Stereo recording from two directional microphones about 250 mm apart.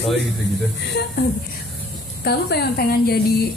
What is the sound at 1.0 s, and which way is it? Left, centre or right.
Speech, left.